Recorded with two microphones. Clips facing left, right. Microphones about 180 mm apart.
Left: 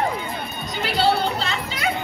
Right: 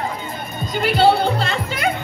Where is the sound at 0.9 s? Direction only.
55° right (ahead or behind).